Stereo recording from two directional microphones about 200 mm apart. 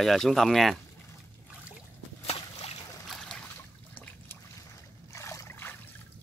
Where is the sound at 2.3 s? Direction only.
30° left (ahead or behind).